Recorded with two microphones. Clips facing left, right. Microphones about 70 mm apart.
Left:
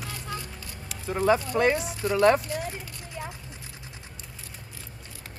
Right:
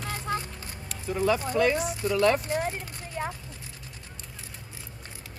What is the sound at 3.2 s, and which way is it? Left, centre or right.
Vehicle, right.